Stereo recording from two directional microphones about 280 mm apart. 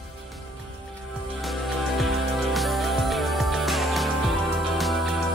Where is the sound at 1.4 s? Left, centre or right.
Centre.